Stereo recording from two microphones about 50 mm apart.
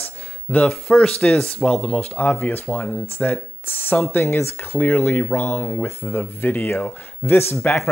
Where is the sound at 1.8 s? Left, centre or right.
Left.